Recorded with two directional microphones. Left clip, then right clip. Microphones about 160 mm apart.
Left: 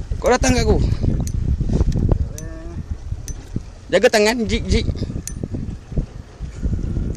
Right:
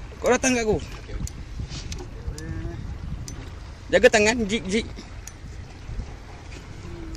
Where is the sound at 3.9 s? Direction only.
15° left (ahead or behind).